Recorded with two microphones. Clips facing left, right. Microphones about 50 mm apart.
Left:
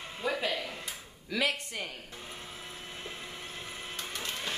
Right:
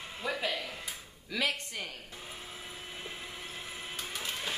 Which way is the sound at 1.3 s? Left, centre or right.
Centre.